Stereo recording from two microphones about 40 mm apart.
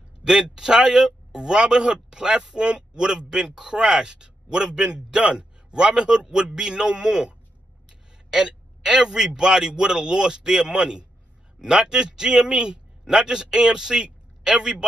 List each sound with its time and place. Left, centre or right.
0.2 s a man's voice: centre